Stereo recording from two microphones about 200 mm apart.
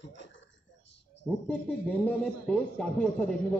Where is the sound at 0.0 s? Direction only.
65° left (ahead or behind).